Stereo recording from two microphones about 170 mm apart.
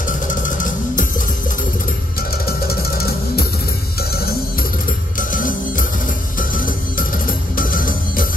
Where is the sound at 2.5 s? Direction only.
65° left (ahead or behind).